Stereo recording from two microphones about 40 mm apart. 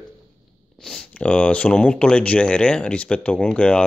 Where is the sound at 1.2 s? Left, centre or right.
Left.